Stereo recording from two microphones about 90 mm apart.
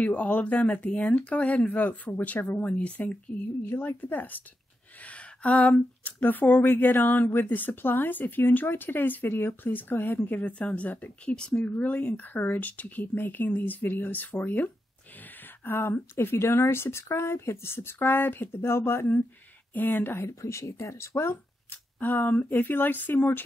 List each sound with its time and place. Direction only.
0.0 s speech: 15° left (ahead or behind)